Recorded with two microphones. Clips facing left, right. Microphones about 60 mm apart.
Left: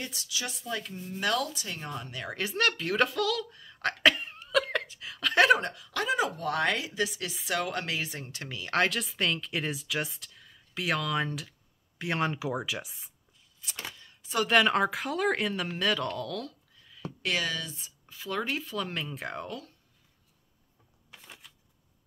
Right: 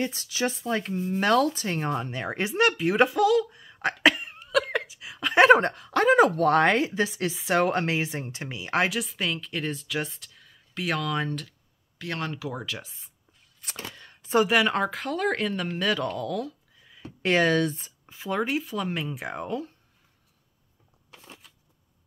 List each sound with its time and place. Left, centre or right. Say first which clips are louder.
0.0 s speech: right 9 dB; right; by 5.5 s centre
5.5 s a woman's voice: right 7 dB; right; by 9.0 s centre
9.0 s speech: even; centre
12.0 s speech: left 2 dB; centre
13.6 s a sound: right 2 dB; right
14.5 s speech: right 1 dB; centre
17.2 s a woman's voice: right 10 dB; right
18.0 s speech: right 5 dB; right
18.6 s speech: right 4 dB; centre